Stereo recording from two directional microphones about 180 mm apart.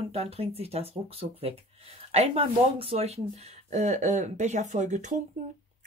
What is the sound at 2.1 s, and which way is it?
Speech, 35° right (ahead or behind).